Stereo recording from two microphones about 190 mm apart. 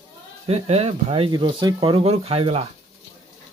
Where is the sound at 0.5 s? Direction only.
30° right (ahead or behind).